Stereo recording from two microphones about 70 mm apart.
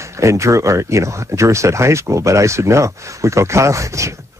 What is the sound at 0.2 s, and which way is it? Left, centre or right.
Speech, right.